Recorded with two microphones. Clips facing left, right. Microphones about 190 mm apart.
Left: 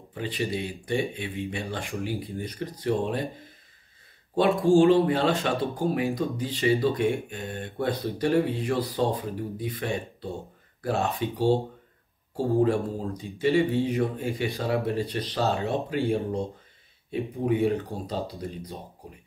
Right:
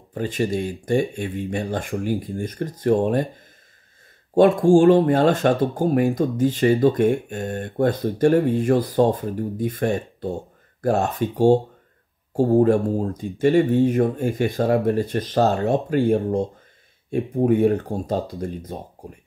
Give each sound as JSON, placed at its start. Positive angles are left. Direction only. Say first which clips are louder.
{"t": 0.1, "sound": "speech", "louder": "right 6 dB", "side_deg": -45}
{"t": 4.4, "sound": "speech", "louder": "right 5 dB", "side_deg": -50}